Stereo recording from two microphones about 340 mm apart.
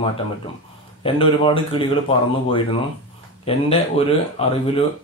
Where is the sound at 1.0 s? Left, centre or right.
Centre.